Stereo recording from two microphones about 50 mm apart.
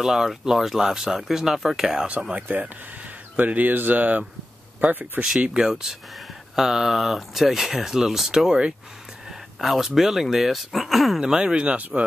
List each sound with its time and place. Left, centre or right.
0.0 s speech: centre
2.0 s speech: right
5.6 s speech: centre
11.1 s speech: centre